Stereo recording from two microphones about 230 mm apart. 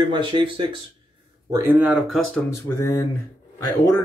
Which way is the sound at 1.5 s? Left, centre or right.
Centre.